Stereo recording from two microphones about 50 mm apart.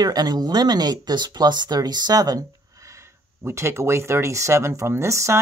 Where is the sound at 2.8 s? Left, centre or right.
Right.